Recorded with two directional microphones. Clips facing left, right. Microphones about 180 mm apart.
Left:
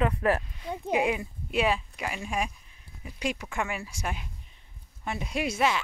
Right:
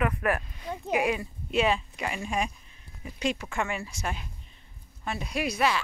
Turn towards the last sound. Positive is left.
turn(degrees=20)  # may be behind; listen again after turning